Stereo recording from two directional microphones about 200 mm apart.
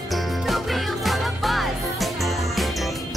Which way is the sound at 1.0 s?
Centre (ahead or behind).